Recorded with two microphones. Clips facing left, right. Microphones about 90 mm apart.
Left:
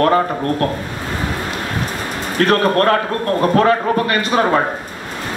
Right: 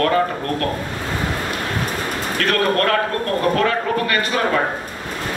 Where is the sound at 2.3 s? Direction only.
30° left (ahead or behind).